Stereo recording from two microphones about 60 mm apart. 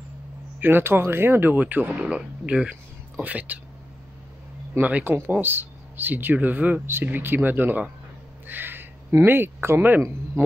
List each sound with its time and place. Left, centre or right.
0.6 s speech: right
2.0 s speech: centre
4.7 s speech: right
8.5 s a sound: right
9.2 s speech: right